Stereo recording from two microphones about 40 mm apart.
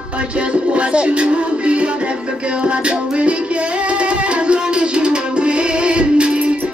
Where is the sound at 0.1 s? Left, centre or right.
Right.